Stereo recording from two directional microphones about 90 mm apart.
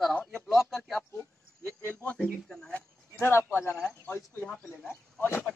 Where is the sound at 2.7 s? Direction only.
25° left (ahead or behind).